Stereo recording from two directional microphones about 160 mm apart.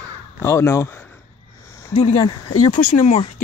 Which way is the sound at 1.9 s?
40° left (ahead or behind).